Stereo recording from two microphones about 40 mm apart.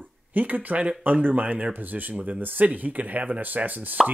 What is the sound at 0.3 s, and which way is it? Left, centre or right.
Speech, right.